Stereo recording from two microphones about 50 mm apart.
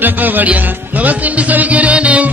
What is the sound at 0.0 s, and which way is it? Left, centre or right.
Music, right.